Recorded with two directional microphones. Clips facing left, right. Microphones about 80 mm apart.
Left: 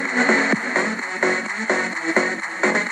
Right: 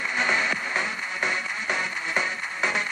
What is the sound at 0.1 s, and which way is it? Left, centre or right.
Music, left.